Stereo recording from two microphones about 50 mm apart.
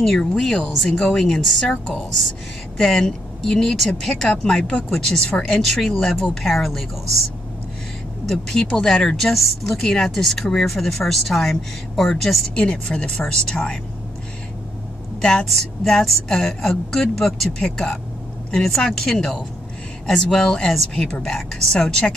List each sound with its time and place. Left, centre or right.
0.0 s speech: centre
2.8 s speech: centre
6.1 s speech: left
6.4 s a woman's voice: centre
8.8 s a woman's voice: centre
12.8 s speech: centre
15.4 s speech: centre